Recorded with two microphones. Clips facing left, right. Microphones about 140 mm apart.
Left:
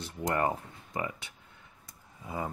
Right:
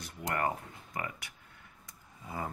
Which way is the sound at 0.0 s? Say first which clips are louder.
Left 4 dB; 25° left (ahead or behind).